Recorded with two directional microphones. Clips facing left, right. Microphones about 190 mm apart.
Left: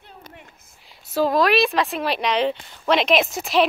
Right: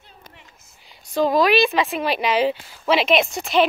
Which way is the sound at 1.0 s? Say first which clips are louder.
Right 1 dB; 5° left (ahead or behind).